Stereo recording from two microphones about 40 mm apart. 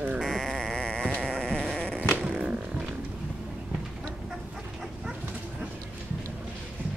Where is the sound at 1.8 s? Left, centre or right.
Left.